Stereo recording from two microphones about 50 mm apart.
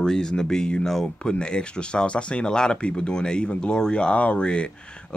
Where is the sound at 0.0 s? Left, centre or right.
Centre.